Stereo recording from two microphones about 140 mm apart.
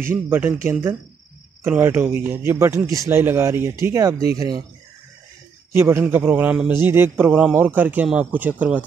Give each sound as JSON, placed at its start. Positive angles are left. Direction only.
{"t": 0.1, "sound": "a man's voice", "side_deg": -15}
{"t": 1.6, "sound": "a man's voice", "side_deg": -15}
{"t": 5.7, "sound": "a man's voice", "side_deg": -15}